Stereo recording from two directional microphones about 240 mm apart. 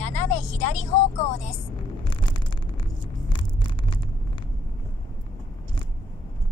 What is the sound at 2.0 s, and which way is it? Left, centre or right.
Vehicle, centre.